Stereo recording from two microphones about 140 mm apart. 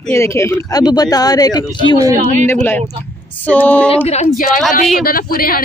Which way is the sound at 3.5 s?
10° left (ahead or behind).